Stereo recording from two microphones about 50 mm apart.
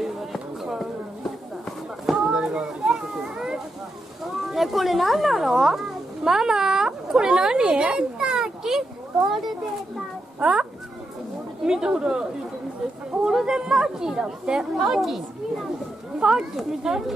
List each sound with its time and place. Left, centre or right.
0.0 s a sound: centre
2.0 s children playing: centre
4.5 s a child's voice: centre
8.6 s a sound: centre
10.4 s speech: centre
16.2 s speech: centre